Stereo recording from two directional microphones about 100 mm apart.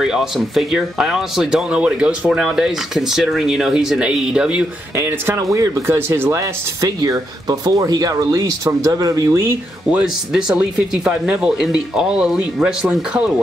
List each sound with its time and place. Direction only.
0.0 s speech: 5° right (ahead or behind)
4.9 s speech: 25° right (ahead or behind)
9.8 s speech: 10° right (ahead or behind)